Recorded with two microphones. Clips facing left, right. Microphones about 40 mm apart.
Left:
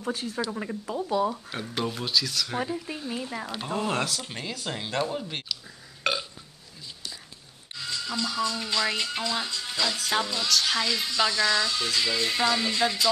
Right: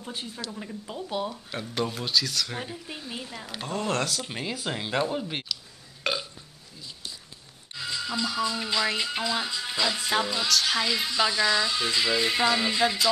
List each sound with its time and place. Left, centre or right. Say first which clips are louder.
0.0 s speech: left 5 dB; left
0.5 s speech: left 5 dB; left
1.5 s speech: even; centre
3.3 s speech: left 6 dB; left
3.6 s speech: right 1 dB; centre
4.3 s speech: right 2 dB; centre
6.0 s burping: left 1 dB; centre
7.7 s speech: right 1 dB; centre